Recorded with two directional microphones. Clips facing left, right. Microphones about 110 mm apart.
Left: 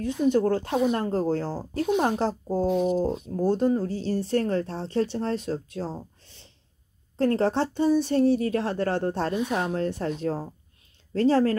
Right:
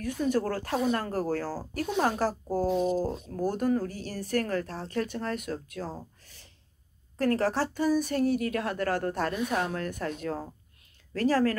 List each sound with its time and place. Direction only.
0.0 s speech: 20° left (ahead or behind)
6.2 s a sound: 25° left (ahead or behind)
7.2 s speech: 25° left (ahead or behind)